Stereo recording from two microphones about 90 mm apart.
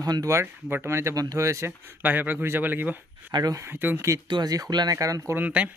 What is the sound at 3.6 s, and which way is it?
Speech, 25° right (ahead or behind).